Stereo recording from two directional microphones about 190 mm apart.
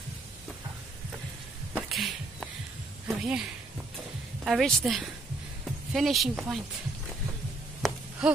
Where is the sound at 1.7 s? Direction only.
Centre (ahead or behind).